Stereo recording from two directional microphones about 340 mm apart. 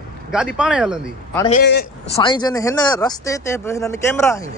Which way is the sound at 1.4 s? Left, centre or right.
Left.